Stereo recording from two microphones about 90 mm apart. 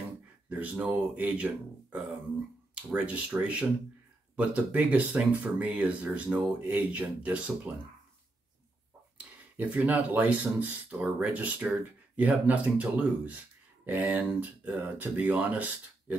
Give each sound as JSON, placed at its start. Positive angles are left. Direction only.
{"t": 0.5, "sound": "speech", "side_deg": -15}
{"t": 9.2, "sound": "speech", "side_deg": -15}